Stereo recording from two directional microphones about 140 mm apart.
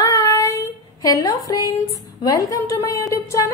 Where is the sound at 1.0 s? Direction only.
25° left (ahead or behind).